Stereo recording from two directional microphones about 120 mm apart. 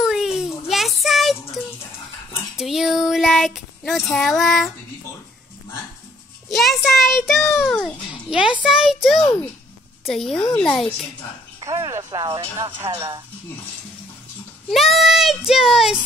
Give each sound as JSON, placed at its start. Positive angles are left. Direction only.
{"t": 0.0, "sound": "child singing", "side_deg": 0}
{"t": 2.5, "sound": "a child's voice", "side_deg": -5}
{"t": 6.5, "sound": "a child's voice", "side_deg": 0}
{"t": 11.9, "sound": "speech", "side_deg": -30}
{"t": 12.8, "sound": "speech", "side_deg": -25}
{"t": 14.7, "sound": "a child's voice", "side_deg": 0}